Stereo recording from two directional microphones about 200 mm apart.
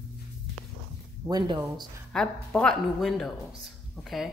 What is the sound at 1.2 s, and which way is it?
Speech, 15° right (ahead or behind).